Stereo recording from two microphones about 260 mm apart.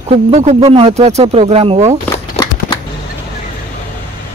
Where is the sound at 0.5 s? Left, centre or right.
Right.